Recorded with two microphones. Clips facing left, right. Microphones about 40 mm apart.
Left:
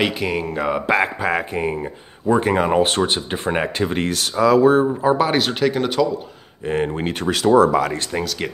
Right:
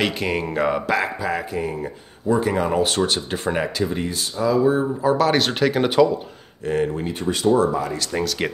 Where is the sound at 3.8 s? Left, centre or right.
Left.